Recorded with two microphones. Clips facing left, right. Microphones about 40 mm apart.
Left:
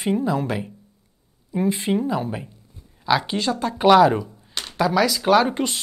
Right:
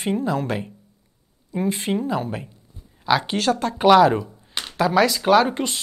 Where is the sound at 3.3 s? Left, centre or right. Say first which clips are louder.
Right 2 dB; right.